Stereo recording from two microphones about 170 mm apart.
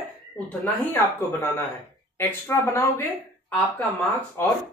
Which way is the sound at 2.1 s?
10° left (ahead or behind).